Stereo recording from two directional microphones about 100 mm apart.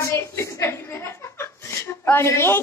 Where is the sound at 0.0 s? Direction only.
25° left (ahead or behind).